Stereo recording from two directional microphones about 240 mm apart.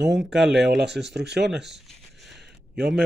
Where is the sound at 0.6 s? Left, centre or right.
Right.